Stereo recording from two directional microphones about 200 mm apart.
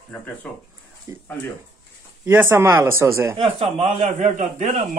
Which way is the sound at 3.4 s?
30° right (ahead or behind).